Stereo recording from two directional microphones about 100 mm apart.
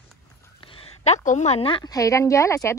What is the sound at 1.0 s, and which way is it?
Speech, 90° left.